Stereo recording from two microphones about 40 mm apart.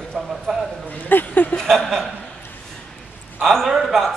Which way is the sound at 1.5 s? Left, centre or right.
Centre.